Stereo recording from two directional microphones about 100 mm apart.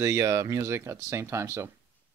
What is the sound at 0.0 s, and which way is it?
Speech, 30° right (ahead or behind).